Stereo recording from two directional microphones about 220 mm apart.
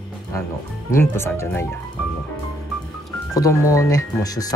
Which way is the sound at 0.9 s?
10° left (ahead or behind).